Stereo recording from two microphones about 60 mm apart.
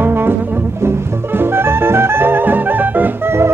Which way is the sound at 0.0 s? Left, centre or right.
Right.